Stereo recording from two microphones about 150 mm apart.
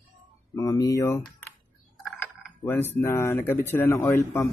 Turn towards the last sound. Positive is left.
turn(degrees=15)  # may be behind; listen again after turning